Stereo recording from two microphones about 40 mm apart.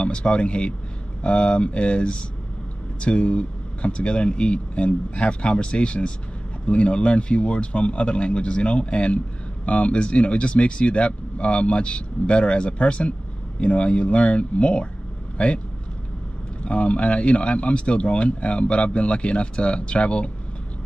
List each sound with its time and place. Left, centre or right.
0.0 s speech: left
16.6 s speech: left